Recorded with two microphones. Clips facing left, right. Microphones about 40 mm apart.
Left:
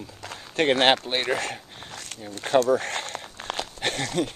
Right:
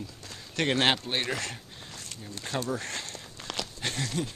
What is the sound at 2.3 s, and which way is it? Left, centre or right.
Speech, left.